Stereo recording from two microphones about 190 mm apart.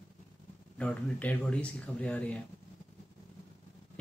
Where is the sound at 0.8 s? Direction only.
5° left (ahead or behind).